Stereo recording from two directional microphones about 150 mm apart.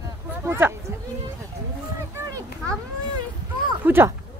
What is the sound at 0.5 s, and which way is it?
Speech, 15° right (ahead or behind).